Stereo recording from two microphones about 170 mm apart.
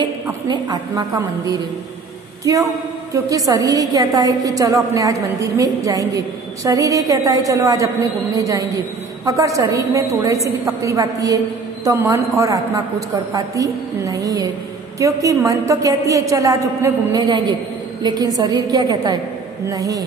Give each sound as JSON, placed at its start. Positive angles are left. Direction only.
{"t": 0.0, "sound": "a woman's voice", "side_deg": -25}
{"t": 9.2, "sound": "a woman's voice", "side_deg": -20}